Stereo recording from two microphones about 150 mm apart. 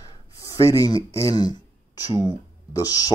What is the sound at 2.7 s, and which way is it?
Speech, 25° left (ahead or behind).